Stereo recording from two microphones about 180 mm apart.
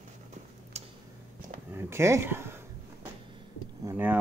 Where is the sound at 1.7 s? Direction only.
15° right (ahead or behind).